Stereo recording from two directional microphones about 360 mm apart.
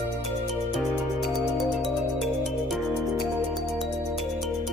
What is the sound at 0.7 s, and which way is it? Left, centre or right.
Music, centre.